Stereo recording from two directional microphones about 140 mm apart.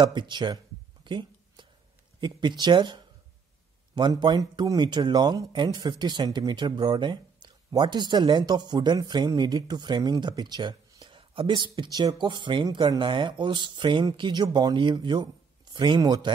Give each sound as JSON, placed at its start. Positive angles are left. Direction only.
{"t": 0.0, "sound": "speech", "side_deg": -35}
{"t": 1.0, "sound": "a sound", "side_deg": -35}
{"t": 2.1, "sound": "speech", "side_deg": -35}